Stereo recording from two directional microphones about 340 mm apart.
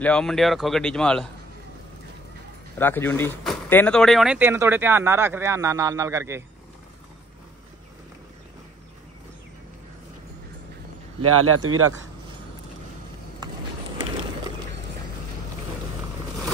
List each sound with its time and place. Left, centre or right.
0.0 s speech: centre
2.8 s speech: centre
11.1 s speech: right